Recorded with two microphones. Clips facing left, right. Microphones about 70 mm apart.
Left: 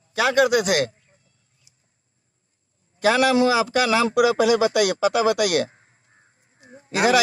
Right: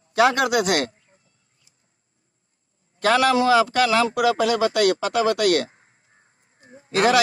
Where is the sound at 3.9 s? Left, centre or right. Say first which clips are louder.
Even; left.